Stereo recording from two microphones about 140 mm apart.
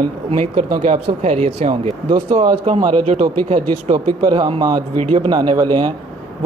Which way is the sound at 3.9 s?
30° right (ahead or behind).